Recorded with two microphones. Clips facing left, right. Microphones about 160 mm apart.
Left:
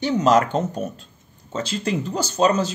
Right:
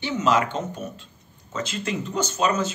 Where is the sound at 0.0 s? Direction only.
40° left (ahead or behind).